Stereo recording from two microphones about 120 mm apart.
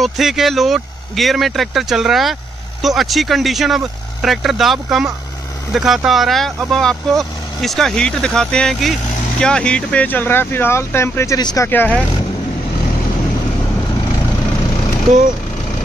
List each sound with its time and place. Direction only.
0.0 s speech: centre (ahead or behind); by 12.0 s 15° left (ahead or behind)